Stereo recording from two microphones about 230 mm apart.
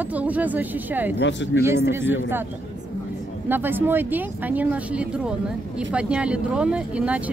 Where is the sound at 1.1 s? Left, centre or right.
Left.